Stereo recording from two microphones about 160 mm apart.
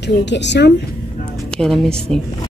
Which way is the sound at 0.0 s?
90° left.